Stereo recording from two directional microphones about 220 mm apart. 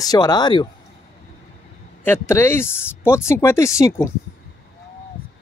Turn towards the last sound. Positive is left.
turn(degrees=15)  # may be behind; listen again after turning